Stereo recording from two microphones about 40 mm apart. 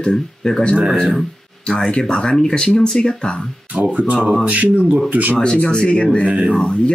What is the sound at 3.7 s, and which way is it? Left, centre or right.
Speech, right.